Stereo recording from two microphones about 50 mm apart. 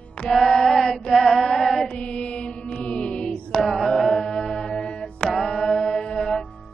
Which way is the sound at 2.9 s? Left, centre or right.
Left.